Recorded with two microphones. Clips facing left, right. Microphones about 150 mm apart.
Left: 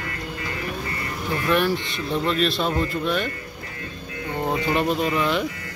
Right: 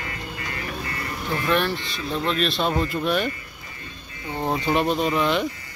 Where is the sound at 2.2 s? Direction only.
Centre (ahead or behind).